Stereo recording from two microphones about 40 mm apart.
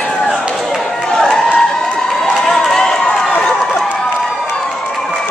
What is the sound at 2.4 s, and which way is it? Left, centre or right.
Run, centre.